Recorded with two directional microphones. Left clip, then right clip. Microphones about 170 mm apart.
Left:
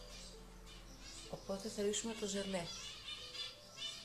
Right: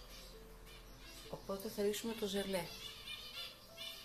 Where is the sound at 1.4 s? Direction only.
20° right (ahead or behind).